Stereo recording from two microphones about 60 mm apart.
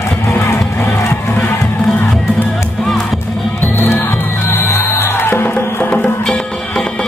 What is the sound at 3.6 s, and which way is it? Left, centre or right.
Music, left.